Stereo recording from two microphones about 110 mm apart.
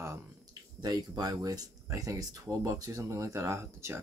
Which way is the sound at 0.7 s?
35° right (ahead or behind).